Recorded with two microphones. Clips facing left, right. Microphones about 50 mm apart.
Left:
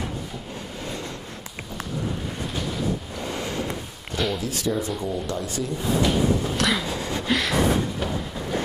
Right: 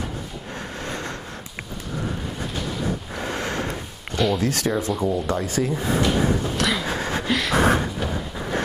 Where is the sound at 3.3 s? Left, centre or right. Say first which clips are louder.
Right 2 dB; right.